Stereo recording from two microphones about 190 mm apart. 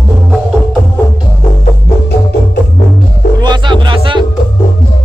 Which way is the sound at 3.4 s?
25° right (ahead or behind).